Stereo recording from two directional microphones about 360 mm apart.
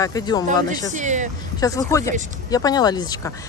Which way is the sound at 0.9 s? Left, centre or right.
Centre.